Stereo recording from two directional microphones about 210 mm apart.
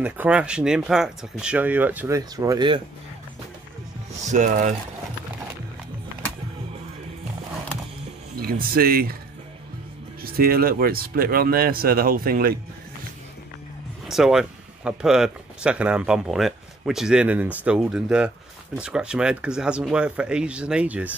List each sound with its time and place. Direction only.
0.0 s speech: 5° right (ahead or behind)
4.3 s speech: 35° right (ahead or behind)
8.4 s speech: 45° right (ahead or behind)
10.2 s speech: 45° right (ahead or behind)
14.0 s speech: centre (ahead or behind)